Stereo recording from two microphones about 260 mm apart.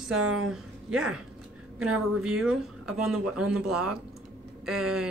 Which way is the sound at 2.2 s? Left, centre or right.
Centre.